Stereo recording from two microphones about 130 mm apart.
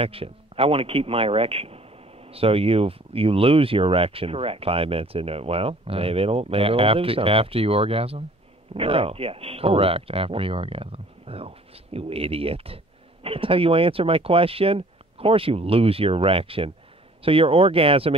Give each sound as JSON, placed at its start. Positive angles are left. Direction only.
{"t": 0.0, "sound": "speech", "side_deg": -45}